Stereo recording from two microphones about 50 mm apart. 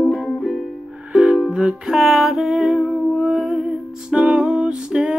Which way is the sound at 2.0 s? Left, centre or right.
Centre.